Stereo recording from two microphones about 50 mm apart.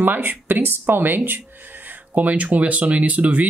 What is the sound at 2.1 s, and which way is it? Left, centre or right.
Speech, right.